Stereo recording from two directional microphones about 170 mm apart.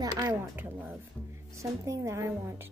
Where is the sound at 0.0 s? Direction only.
25° right (ahead or behind).